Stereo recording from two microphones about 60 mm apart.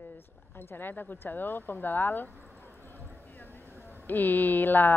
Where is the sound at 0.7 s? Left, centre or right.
Left.